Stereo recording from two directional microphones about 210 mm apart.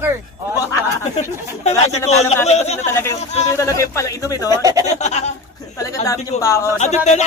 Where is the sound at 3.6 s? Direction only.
15° left (ahead or behind).